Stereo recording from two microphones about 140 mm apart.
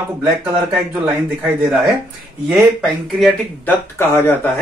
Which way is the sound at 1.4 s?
10° right (ahead or behind).